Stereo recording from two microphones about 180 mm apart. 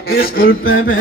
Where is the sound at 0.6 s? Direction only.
90° left.